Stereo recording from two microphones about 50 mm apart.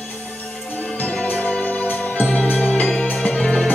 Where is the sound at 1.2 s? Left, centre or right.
Left.